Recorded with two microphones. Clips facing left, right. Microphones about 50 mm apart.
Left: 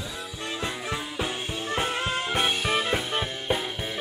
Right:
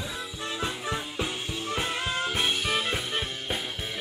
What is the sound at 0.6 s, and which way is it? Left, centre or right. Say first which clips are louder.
Music: even; centre.